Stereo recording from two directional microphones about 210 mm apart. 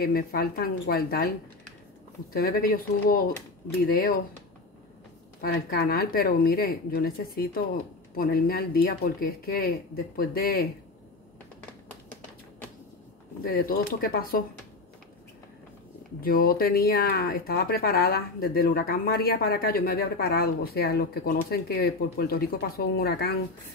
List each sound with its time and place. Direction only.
0.0 s speech: 45° left (ahead or behind)
2.3 s speech: 45° left (ahead or behind)
5.4 s speech: 45° left (ahead or behind)
13.5 s speech: 45° left (ahead or behind)
16.2 s speech: 45° left (ahead or behind)